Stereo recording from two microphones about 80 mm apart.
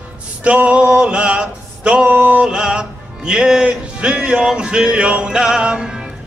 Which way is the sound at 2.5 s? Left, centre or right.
Centre.